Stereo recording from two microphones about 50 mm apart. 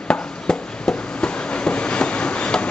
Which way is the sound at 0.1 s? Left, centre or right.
Centre.